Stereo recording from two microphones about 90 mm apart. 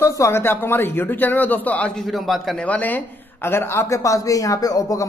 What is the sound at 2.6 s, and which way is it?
A woman's voice, 15° left (ahead or behind).